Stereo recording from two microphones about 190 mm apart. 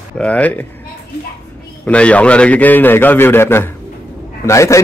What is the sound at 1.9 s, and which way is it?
Speech, 5° left (ahead or behind).